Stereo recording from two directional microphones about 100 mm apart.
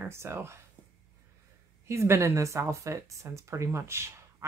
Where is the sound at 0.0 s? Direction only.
25° right (ahead or behind).